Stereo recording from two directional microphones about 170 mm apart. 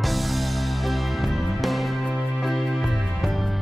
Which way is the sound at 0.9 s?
Centre (ahead or behind).